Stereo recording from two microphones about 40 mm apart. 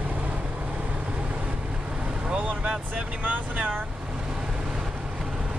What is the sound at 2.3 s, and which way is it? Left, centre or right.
Speech, right.